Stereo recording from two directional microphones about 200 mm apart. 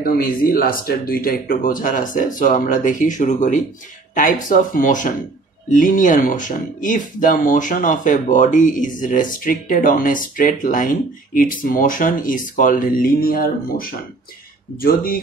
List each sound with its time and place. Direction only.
0.0 s speech: 45° left (ahead or behind)